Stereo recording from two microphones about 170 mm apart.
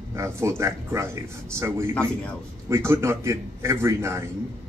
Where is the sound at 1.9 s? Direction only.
5° left (ahead or behind).